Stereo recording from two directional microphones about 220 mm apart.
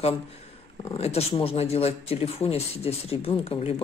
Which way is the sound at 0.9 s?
25° left (ahead or behind).